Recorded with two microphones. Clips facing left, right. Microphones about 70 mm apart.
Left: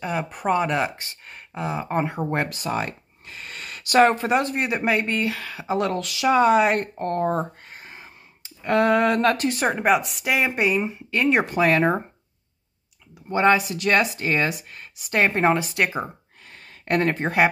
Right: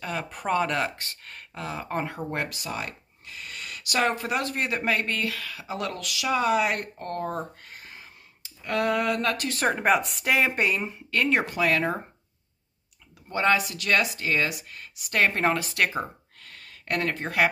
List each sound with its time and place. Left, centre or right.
0.0 s a woman's voice: centre
2.3 s speech: left
4.3 s speech: left
9.5 s a woman's voice: centre; by 12.0 s left
13.3 s speech: left
16.5 s a sound: left